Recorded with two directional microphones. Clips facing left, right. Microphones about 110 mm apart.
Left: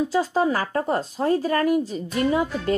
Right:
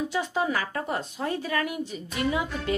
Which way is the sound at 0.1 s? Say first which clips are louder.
Left 6 dB; 35° left (ahead or behind).